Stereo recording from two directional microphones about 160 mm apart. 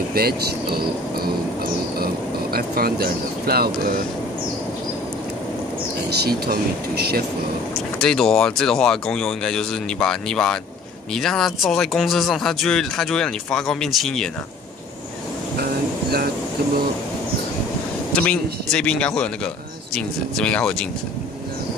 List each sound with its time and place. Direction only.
0.1 s speech: 75° right (ahead or behind)
2.5 s speech: 70° right (ahead or behind)
6.0 s speech: 75° right (ahead or behind)
8.0 s speech: 5° left (ahead or behind)
18.1 s speech: 5° left (ahead or behind)